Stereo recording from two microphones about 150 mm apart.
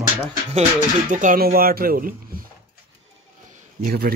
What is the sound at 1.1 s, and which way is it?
Speech, 65° right (ahead or behind).